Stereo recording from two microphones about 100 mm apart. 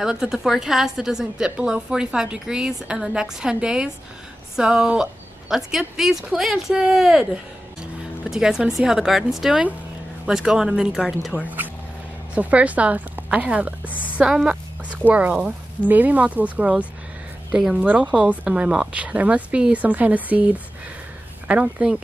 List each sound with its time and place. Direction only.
0.0 s a woman's voice: 5° right (ahead or behind)
8.3 s a woman's voice: 5° right (ahead or behind)
11.4 s speech: 20° right (ahead or behind)